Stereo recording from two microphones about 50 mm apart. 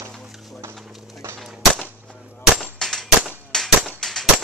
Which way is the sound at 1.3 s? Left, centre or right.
Centre.